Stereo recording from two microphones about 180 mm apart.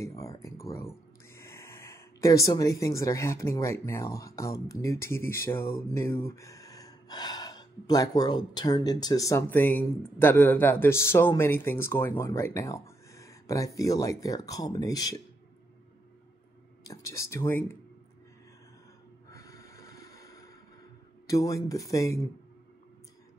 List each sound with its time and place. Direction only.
0.0 s speech: 20° left (ahead or behind)
16.8 s speech: 20° left (ahead or behind)
19.3 s snort: 15° left (ahead or behind)
21.3 s speech: 20° left (ahead or behind)